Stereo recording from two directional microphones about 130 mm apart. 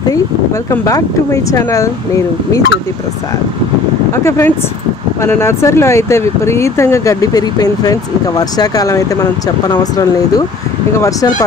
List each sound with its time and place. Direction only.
0.7 s speech: 25° left (ahead or behind)
4.1 s speech: 20° left (ahead or behind)